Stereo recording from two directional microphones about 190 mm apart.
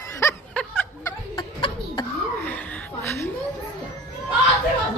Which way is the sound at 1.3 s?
25° left (ahead or behind).